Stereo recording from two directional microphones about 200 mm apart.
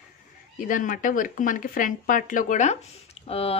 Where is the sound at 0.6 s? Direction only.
40° left (ahead or behind).